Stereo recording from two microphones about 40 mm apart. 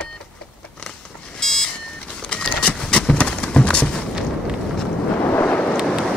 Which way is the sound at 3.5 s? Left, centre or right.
Left.